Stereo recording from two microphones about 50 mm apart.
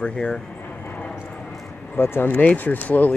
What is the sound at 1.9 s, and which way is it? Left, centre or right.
Speech, left.